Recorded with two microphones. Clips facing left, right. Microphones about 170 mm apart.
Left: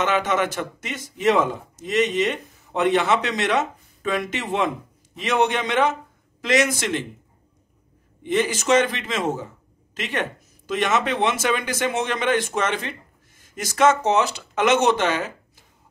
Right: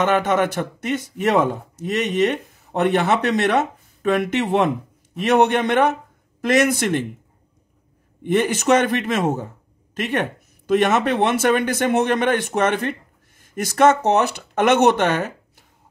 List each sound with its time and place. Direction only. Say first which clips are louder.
0.0 s speech: right 3 dB; 55° right (ahead or behind)
8.2 s speech: right 3 dB; 55° right (ahead or behind)